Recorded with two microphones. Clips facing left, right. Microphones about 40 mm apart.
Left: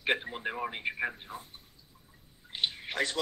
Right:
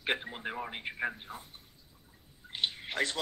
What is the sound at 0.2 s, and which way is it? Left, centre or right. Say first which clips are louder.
Speech: left 3 dB; centre.